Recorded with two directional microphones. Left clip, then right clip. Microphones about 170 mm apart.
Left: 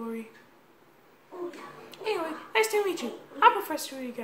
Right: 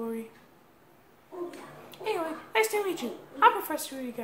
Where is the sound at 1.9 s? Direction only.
Centre (ahead or behind).